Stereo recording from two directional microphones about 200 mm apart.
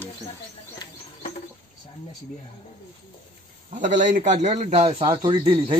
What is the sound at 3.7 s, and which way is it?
A man's voice, 40° right (ahead or behind).